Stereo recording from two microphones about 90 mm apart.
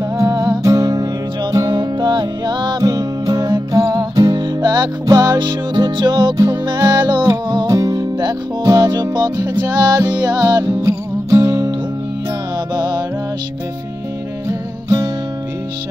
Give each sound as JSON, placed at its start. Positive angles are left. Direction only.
{"t": 0.2, "sound": "music", "side_deg": -45}
{"t": 6.3, "sound": "music", "side_deg": -40}
{"t": 6.6, "sound": "music", "side_deg": -50}
{"t": 10.6, "sound": "music", "side_deg": -35}
{"t": 12.7, "sound": "music", "side_deg": -50}
{"t": 14.5, "sound": "music", "side_deg": -40}